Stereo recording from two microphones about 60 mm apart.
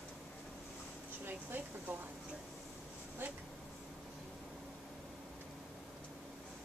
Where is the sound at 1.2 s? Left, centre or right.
Right.